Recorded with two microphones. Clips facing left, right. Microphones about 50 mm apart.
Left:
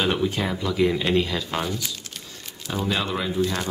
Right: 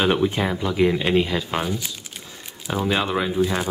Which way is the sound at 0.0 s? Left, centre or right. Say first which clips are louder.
Right 3 dB; centre.